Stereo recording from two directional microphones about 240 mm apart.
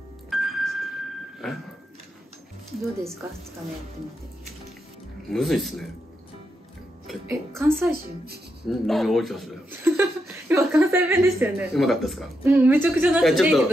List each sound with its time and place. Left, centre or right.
0.3 s music: centre
5.3 s speech: centre
7.1 s a woman's voice: centre